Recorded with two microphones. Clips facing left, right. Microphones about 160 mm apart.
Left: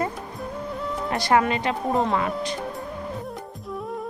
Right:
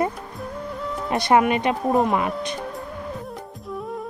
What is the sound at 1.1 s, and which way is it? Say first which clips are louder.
Speech: right 3 dB; 20° right (ahead or behind).